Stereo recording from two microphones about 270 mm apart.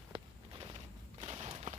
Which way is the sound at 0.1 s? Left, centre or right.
Centre.